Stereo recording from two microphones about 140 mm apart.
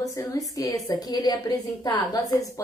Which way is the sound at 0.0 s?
25° left (ahead or behind).